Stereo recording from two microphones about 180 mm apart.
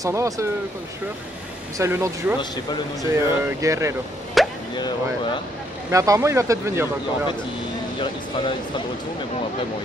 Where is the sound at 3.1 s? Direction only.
15° right (ahead or behind).